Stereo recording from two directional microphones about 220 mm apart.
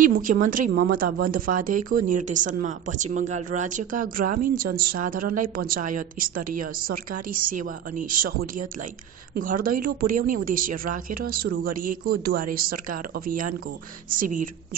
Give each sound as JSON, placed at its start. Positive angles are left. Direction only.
{"t": 0.0, "sound": "a woman's voice", "side_deg": -40}
{"t": 14.1, "sound": "a woman's voice", "side_deg": -40}